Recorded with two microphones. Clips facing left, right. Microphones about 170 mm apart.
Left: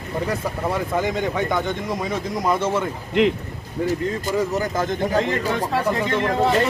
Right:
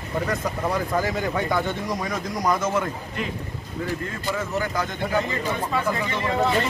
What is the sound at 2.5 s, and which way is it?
Speech, 30° left (ahead or behind).